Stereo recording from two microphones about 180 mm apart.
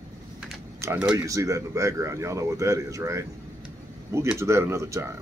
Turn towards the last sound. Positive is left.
turn(degrees=-15)  # may be behind; listen again after turning